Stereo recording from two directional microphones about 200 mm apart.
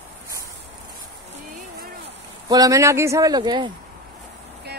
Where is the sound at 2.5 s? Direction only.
15° right (ahead or behind).